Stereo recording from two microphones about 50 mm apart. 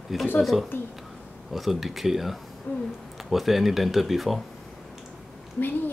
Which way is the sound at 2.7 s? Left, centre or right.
Left.